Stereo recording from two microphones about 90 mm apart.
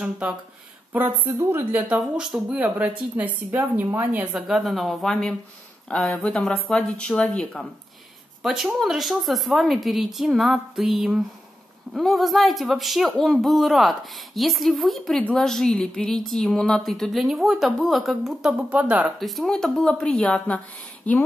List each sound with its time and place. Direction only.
0.0 s a woman's voice: 10° right (ahead or behind)
0.9 s a woman's voice: 25° right (ahead or behind); by 7.6 s 10° left (ahead or behind)
8.4 s speech: 5° right (ahead or behind)
19.1 s speech: centre (ahead or behind)